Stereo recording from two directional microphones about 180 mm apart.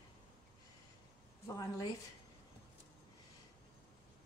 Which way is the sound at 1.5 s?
20° left (ahead or behind).